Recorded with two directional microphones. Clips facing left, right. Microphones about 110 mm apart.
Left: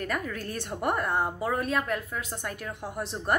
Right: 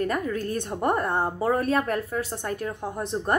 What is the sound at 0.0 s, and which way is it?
Speech, 30° right (ahead or behind).